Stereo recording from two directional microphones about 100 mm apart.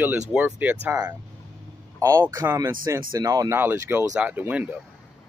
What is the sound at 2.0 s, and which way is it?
Speech, 30° right (ahead or behind).